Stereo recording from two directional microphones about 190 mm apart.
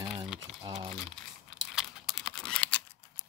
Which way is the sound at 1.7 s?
Centre (ahead or behind).